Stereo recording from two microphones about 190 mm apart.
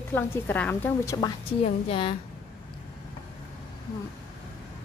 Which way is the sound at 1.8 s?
30° left (ahead or behind).